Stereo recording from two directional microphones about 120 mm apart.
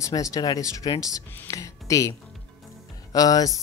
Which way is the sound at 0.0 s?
30° left (ahead or behind).